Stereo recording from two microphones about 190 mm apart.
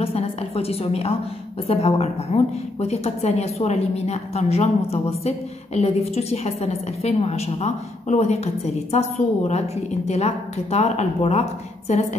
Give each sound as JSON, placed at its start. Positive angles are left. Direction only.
{"t": 0.0, "sound": "a woman's voice", "side_deg": 30}